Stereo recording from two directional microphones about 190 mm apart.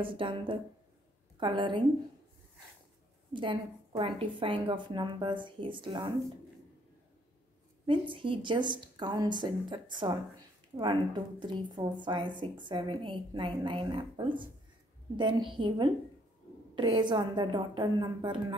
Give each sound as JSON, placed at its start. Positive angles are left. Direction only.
{"t": 0.0, "sound": "a woman's voice", "side_deg": -25}
{"t": 3.3, "sound": "a woman's voice", "side_deg": -25}
{"t": 8.1, "sound": "a woman's voice", "side_deg": -25}